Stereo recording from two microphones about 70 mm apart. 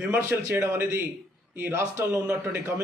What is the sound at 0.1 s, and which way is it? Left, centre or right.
A man's voice, right.